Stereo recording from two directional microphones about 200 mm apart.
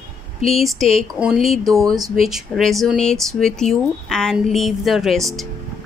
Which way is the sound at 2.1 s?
Centre (ahead or behind).